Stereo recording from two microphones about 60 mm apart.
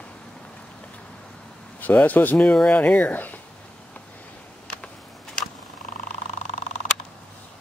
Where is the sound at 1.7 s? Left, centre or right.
Left.